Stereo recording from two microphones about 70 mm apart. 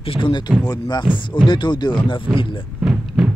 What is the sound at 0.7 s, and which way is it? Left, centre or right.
Speech, left.